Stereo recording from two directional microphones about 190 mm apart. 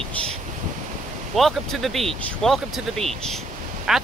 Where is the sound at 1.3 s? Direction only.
Centre (ahead or behind).